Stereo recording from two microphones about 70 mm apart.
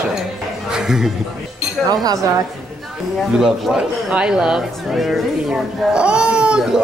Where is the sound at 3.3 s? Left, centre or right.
Centre.